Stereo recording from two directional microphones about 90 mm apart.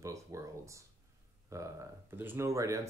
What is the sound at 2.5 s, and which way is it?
Speech, 35° right (ahead or behind).